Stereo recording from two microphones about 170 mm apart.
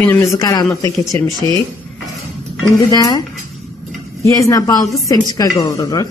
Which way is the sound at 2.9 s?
20° left (ahead or behind).